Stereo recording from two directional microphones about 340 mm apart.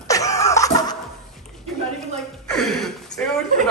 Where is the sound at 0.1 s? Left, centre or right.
Centre.